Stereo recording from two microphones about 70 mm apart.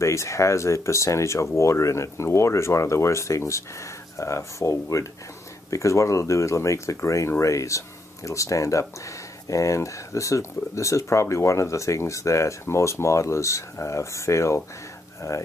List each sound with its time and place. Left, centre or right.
0.0 s speech: left